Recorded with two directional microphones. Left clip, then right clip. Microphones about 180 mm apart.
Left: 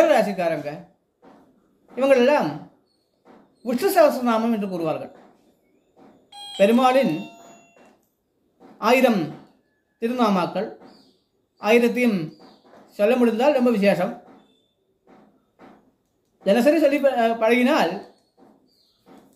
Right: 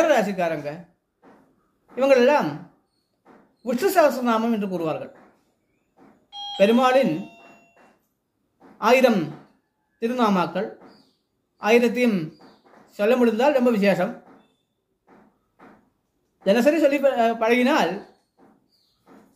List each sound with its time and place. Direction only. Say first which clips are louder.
0.0 s speech: left 2 dB; 15° right (ahead or behind)
2.0 s a woman's voice: even; 15° right (ahead or behind)
3.6 s a woman's voice: left 1 dB; 15° right (ahead or behind)
6.5 s a woman's voice: even; 15° right (ahead or behind)
8.7 s a woman's voice: right 1 dB; 15° right (ahead or behind)
16.4 s a woman's voice: left 1 dB; 15° right (ahead or behind)